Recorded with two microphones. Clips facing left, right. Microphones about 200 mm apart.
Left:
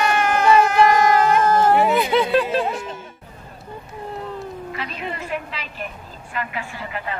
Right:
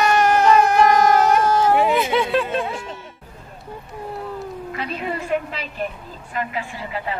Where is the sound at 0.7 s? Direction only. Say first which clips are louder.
Even; centre (ahead or behind).